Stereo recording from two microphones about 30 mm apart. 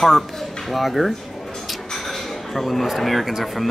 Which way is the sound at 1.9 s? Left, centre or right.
Centre.